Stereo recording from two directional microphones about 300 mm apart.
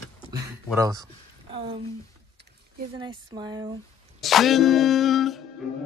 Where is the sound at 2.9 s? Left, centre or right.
Centre.